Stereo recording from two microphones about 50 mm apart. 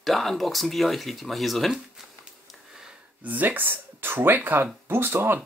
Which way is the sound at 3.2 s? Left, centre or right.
Right.